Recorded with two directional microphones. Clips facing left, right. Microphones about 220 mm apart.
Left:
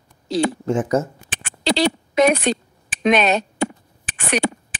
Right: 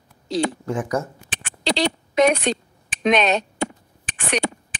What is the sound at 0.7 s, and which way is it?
Speech, 25° left (ahead or behind).